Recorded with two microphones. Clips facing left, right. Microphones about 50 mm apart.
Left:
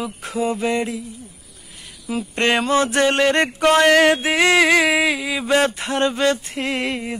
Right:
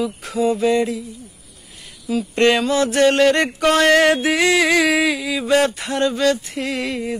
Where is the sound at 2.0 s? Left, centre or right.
Left.